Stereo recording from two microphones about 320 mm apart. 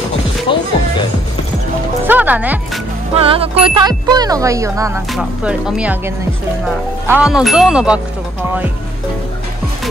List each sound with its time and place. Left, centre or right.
0.5 s speech: centre
2.0 s speech: centre
3.2 s speech: centre